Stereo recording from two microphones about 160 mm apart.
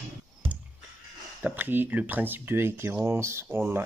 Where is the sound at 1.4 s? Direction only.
10° right (ahead or behind).